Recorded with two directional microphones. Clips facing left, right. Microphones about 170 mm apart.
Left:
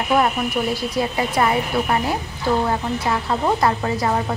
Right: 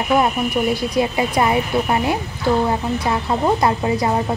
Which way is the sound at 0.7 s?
15° right (ahead or behind).